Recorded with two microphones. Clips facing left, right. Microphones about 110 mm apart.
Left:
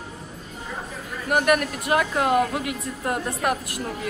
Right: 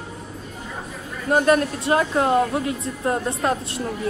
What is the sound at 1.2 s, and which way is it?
A woman's voice, 25° right (ahead or behind).